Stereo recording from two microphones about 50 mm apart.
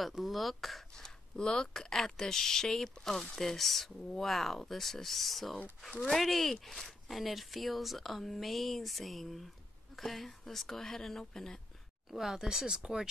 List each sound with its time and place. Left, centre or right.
0.0 s speech: centre
1.0 s a woman's voice: centre
12.1 s speech: centre